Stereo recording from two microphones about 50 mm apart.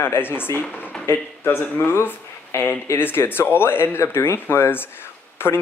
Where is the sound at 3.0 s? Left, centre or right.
Left.